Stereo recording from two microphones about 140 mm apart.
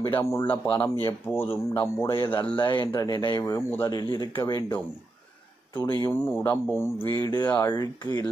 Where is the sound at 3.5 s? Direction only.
20° left (ahead or behind).